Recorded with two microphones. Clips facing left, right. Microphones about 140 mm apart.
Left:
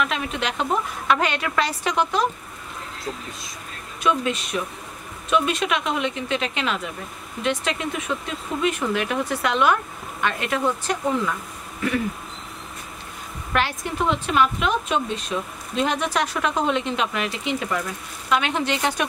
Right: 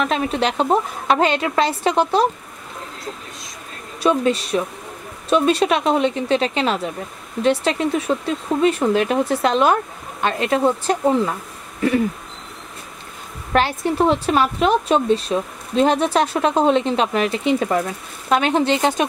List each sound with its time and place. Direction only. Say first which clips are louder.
0.0 s speech: right 6 dB; 35° right (ahead or behind)
4.0 s speech: right 5 dB; 35° right (ahead or behind)
13.5 s speech: right 6 dB; 35° right (ahead or behind)